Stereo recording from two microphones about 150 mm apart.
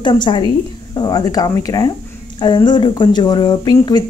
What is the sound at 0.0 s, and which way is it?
A woman's voice, 30° left (ahead or behind).